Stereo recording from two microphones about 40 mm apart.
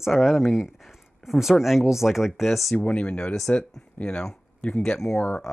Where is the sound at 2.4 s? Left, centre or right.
Centre.